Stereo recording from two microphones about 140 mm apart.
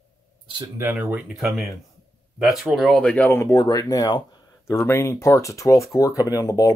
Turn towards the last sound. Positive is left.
turn(degrees=25)  # may be behind; listen again after turning